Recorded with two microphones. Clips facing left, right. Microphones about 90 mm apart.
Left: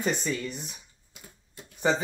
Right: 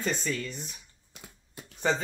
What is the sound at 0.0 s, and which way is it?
Speech, 15° left (ahead or behind).